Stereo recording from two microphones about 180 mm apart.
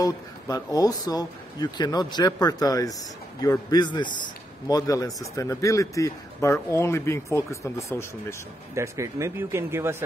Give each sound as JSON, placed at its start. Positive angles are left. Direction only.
{"t": 0.0, "sound": "a man's voice", "side_deg": 20}
{"t": 8.7, "sound": "speech", "side_deg": -15}